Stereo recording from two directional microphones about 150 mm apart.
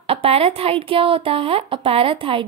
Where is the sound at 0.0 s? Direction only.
40° right (ahead or behind).